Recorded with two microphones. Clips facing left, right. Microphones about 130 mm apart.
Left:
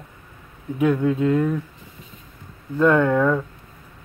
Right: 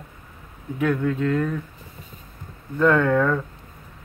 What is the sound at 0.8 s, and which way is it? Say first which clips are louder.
Speech: left 3 dB; 20° left (ahead or behind).